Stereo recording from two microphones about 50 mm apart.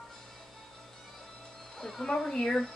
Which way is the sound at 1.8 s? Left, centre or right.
Centre.